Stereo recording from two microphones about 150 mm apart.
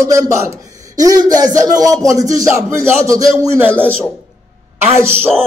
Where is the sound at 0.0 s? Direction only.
20° right (ahead or behind).